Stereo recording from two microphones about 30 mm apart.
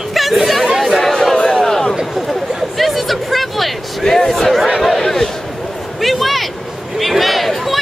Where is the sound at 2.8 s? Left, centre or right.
Centre.